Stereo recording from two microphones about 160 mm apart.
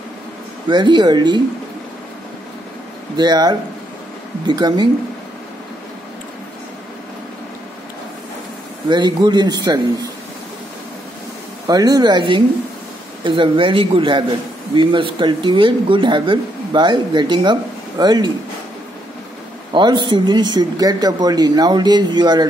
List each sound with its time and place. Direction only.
0.7 s speech: 30° right (ahead or behind)
3.2 s speech: 25° right (ahead or behind)
8.8 s speech: 30° right (ahead or behind)
11.6 s a man's voice: 25° right (ahead or behind)
19.7 s speech: 30° right (ahead or behind)